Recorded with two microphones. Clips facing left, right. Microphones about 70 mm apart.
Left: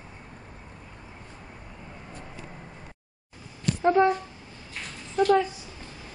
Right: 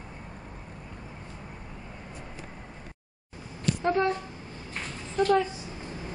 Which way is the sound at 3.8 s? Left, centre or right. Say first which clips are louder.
Left 6 dB; centre.